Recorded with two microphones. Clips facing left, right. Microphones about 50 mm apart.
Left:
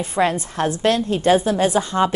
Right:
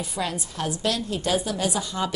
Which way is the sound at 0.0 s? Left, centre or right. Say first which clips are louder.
Left 10 dB; left.